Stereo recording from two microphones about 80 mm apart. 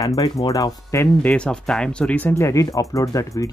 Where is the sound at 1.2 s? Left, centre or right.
Centre.